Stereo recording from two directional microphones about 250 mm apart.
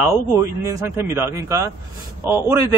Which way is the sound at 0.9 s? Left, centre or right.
Centre.